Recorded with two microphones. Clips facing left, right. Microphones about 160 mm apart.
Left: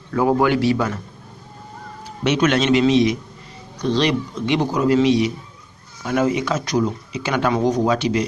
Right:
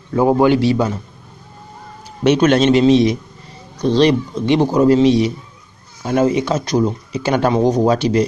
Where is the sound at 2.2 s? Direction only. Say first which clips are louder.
Right 5 dB; 35° right (ahead or behind).